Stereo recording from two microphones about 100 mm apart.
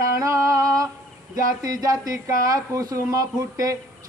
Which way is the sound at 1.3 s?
40° right (ahead or behind).